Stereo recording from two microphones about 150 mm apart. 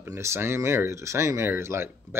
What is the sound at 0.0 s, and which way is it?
Speech, 15° right (ahead or behind).